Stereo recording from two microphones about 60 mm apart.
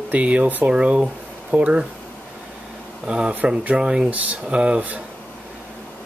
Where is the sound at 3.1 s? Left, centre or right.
Centre.